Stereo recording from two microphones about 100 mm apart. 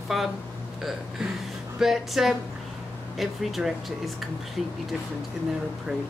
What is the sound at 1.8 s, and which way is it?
Speech, centre (ahead or behind).